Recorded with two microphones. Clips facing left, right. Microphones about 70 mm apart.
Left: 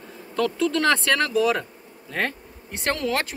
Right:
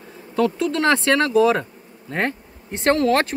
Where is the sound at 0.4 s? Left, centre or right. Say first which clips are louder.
Right 2 dB; right.